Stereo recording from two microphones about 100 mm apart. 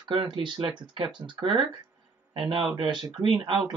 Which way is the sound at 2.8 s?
50° right (ahead or behind).